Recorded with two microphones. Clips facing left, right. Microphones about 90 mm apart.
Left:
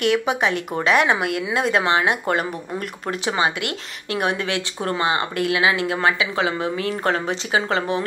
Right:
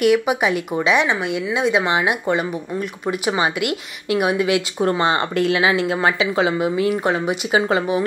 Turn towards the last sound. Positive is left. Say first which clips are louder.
# right 3 dB
turn(degrees=-20)  # may be behind; listen again after turning